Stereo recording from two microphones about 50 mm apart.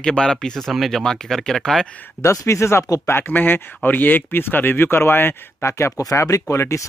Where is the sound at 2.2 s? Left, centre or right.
Left.